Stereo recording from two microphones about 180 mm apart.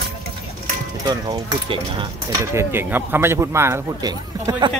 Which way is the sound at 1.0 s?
25° right (ahead or behind).